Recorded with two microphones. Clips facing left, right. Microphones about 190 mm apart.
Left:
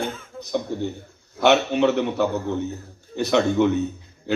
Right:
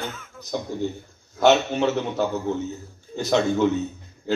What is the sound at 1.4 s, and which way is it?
Speech, 60° left (ahead or behind).